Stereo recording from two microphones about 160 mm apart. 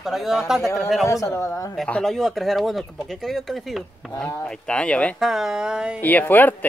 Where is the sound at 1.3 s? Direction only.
20° left (ahead or behind).